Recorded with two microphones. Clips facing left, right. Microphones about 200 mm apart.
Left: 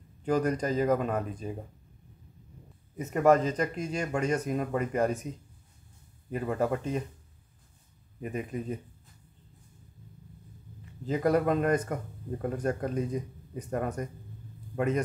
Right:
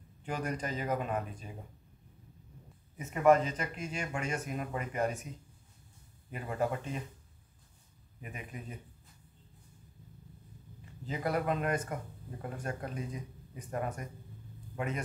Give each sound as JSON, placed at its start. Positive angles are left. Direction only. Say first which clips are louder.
{"t": 0.2, "sound": "speech", "louder": "left 9 dB", "side_deg": 40}
{"t": 3.0, "sound": "speech", "louder": "left 3 dB", "side_deg": 40}
{"t": 6.3, "sound": "speech", "louder": "left 5 dB", "side_deg": 40}
{"t": 8.2, "sound": "speech", "louder": "left 11 dB", "side_deg": 40}
{"t": 11.1, "sound": "a man's voice", "louder": "left 7 dB", "side_deg": 40}